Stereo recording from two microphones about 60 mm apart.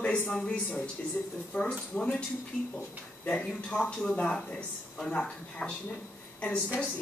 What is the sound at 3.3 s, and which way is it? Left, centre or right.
Speech, centre.